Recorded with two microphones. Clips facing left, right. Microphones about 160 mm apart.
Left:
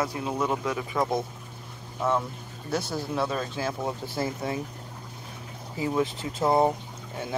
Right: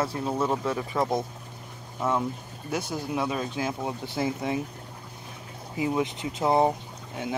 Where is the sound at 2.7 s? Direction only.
15° right (ahead or behind).